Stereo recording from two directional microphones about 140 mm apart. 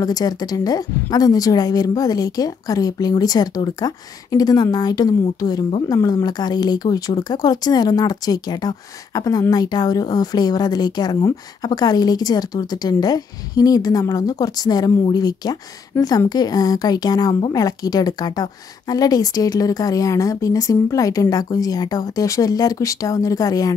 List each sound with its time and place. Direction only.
0.0 s speech: 25° left (ahead or behind)